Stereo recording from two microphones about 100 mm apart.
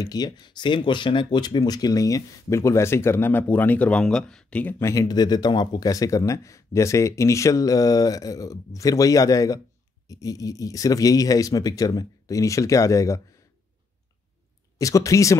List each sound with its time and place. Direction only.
0.0 s speech: 40° left (ahead or behind); by 4.8 s 15° left (ahead or behind)
4.8 s speech: 35° left (ahead or behind)
14.8 s speech: 35° left (ahead or behind)